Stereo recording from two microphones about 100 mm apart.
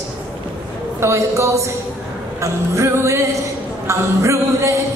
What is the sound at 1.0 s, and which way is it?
A woman's voice, 30° right (ahead or behind).